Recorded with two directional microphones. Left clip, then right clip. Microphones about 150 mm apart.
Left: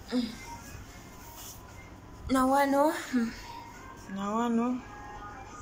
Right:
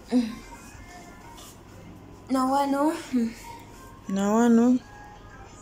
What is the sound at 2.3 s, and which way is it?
A woman's voice, 5° right (ahead or behind).